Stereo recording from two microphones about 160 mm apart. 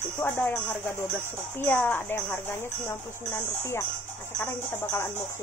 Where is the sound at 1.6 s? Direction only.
10° left (ahead or behind).